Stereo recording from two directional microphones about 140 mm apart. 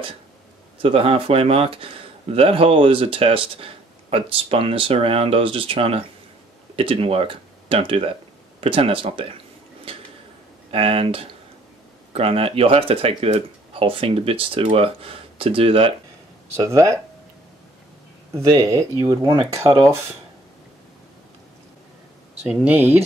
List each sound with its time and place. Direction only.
0.8 s speech: 40° right (ahead or behind)
9.9 s a sound: 40° right (ahead or behind)
10.7 s speech: 40° right (ahead or behind)
16.5 s speech: 20° right (ahead or behind)
18.3 s speech: 20° right (ahead or behind)
22.5 s speech: 10° right (ahead or behind)